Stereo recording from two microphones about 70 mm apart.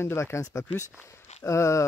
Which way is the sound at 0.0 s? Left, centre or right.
Left.